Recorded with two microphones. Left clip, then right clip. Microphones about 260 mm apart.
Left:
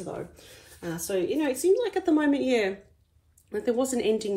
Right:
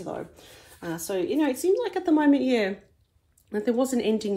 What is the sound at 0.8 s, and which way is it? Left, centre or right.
A woman's voice, right.